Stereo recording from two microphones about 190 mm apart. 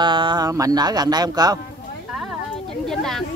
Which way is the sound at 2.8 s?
Centre (ahead or behind).